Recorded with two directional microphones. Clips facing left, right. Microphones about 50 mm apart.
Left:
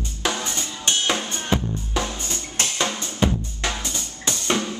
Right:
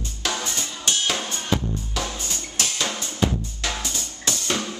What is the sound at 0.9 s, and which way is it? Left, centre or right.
Drum, left.